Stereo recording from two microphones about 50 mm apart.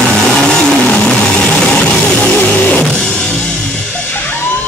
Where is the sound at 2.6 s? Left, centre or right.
Left.